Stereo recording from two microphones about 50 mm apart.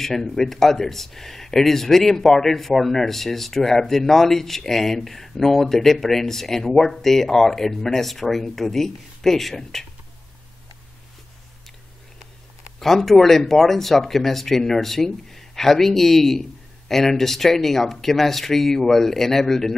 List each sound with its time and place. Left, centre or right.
0.0 s speech: centre
12.7 s speech: centre